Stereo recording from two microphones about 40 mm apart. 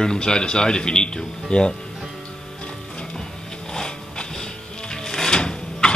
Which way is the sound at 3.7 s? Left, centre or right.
Centre.